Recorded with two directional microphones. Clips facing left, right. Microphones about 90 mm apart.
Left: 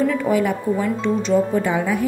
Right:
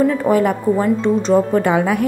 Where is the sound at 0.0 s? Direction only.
35° right (ahead or behind).